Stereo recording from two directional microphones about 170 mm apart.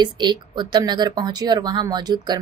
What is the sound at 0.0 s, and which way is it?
A woman's voice, 25° right (ahead or behind).